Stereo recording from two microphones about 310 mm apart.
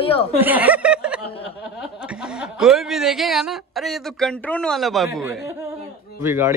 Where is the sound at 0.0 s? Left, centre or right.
Centre.